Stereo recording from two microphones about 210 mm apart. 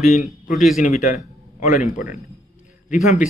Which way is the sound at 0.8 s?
35° left (ahead or behind).